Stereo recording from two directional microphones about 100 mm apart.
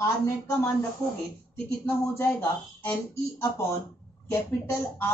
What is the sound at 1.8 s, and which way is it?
Speech, 20° left (ahead or behind).